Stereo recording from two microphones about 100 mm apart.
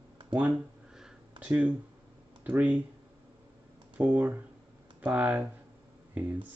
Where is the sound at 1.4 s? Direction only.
15° right (ahead or behind).